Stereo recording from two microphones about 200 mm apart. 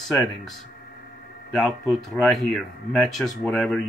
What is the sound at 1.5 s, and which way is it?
Speech, centre (ahead or behind).